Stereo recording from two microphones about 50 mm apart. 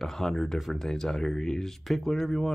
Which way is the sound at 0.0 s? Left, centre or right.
Centre.